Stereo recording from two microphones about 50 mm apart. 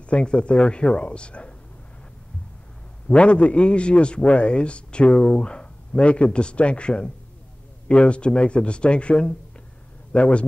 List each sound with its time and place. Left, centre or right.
0.0 s a man's voice: left
3.1 s a man's voice: left